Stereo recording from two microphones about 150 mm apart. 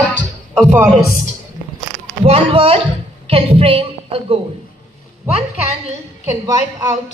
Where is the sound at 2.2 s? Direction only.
40° right (ahead or behind).